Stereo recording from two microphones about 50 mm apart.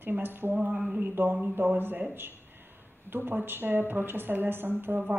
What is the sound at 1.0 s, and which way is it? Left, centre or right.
A woman's voice, right.